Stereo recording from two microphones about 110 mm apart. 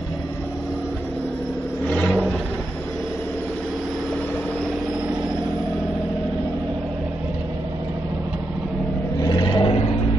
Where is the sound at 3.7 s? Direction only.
Centre (ahead or behind).